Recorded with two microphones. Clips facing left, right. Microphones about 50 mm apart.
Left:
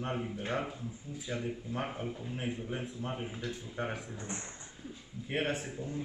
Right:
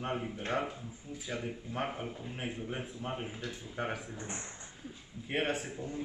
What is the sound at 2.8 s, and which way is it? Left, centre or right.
A man's voice, centre.